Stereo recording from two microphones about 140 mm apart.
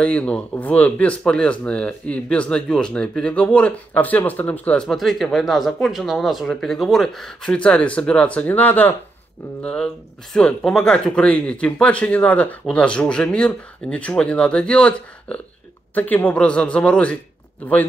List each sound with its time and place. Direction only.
0.0 s speech: 10° left (ahead or behind)